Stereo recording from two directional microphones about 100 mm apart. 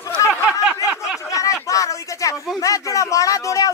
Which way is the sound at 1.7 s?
30° left (ahead or behind).